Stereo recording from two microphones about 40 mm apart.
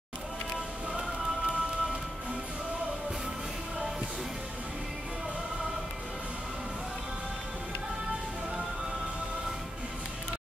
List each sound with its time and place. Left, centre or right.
0.9 s music: right